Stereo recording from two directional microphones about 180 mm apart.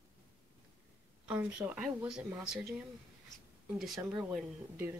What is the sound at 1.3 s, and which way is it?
Speech, 5° right (ahead or behind).